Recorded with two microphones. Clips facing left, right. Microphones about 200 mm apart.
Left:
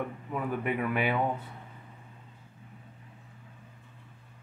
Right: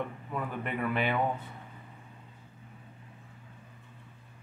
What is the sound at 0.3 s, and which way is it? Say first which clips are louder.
Speech: left 6 dB; 10° left (ahead or behind).